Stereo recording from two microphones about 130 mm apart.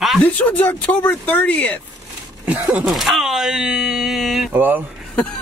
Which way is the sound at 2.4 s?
10° right (ahead or behind).